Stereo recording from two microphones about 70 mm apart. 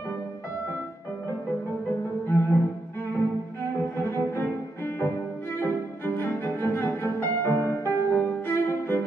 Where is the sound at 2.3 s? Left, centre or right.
Left.